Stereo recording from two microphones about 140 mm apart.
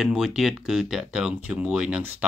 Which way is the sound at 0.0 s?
5° right (ahead or behind).